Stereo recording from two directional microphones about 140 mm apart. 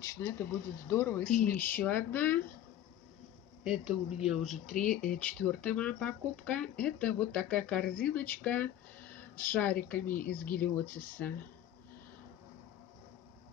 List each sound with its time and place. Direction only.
0.0 s speech: 15° left (ahead or behind)
3.6 s speech: 5° right (ahead or behind)